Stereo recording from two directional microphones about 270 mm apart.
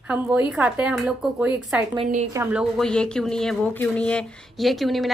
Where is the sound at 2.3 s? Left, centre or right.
Centre.